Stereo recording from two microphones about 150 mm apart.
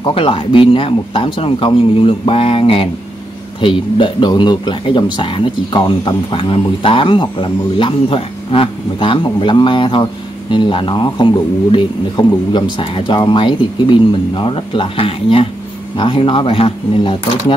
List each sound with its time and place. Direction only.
0.0 s speech: 35° left (ahead or behind)